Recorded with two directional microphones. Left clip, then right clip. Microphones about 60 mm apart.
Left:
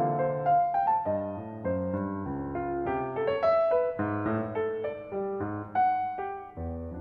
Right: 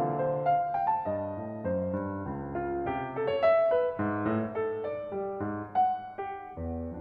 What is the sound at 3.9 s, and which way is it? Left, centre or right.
Music, left.